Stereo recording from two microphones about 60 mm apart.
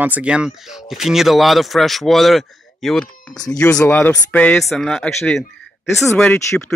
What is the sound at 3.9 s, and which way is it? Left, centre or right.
Speech, left.